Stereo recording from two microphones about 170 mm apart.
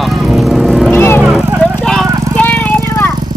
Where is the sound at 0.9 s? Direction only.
15° left (ahead or behind).